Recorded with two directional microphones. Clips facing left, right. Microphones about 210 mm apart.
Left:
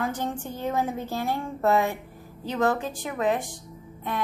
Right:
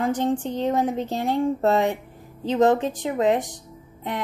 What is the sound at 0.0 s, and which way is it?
Speech, 15° right (ahead or behind).